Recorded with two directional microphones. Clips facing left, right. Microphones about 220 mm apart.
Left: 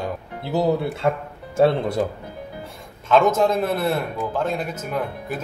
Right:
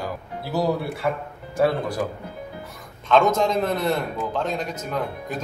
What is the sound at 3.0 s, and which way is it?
A man's voice, 5° left (ahead or behind).